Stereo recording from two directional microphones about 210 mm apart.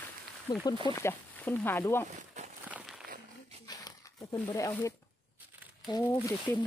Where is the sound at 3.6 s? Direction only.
15° left (ahead or behind).